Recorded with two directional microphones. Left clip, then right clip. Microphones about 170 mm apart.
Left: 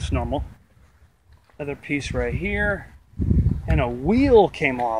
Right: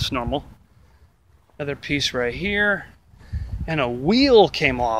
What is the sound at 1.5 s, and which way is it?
Speech, 10° right (ahead or behind).